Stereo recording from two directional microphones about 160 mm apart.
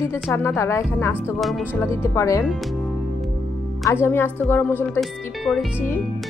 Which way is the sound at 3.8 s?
15° left (ahead or behind).